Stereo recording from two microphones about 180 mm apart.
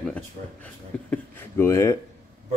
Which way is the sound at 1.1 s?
15° left (ahead or behind).